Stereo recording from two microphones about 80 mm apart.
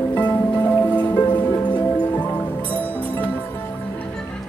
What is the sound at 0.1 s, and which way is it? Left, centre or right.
Music, left.